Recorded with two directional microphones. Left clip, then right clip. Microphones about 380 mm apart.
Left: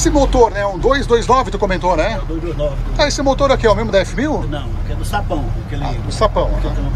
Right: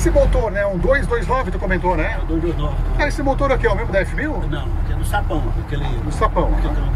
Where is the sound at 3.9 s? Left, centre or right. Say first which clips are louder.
Left 4 dB; centre.